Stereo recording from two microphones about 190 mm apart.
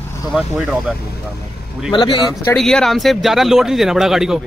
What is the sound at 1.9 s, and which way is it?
Speech, 20° left (ahead or behind).